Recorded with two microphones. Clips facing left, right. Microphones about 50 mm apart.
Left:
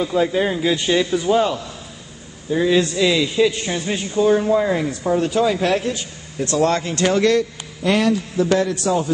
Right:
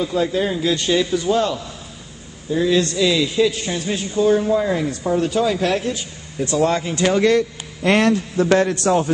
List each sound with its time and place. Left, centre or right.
0.0 s a man's voice: centre
6.4 s a man's voice: centre
7.8 s a man's voice: right